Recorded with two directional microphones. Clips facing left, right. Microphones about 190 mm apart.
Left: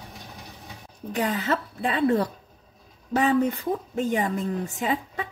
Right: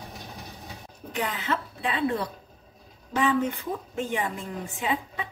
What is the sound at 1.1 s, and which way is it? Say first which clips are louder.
A woman's voice: left 4 dB; 40° left (ahead or behind).